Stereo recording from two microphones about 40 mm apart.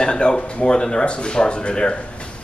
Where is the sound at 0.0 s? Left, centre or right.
Left.